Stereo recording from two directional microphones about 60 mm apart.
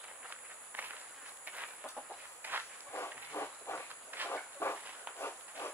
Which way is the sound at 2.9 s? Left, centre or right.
Left.